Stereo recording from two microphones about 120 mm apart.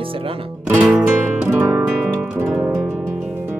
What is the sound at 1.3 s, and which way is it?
Music, 20° right (ahead or behind).